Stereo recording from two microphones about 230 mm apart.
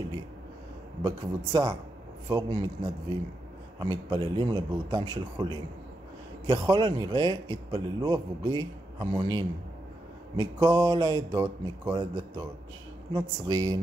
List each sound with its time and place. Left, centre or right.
1.0 s a man's voice: centre